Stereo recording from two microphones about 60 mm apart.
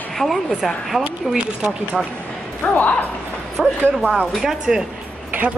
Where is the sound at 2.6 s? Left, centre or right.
Left.